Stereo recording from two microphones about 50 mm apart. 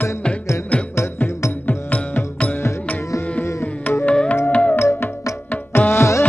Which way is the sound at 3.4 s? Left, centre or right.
Left.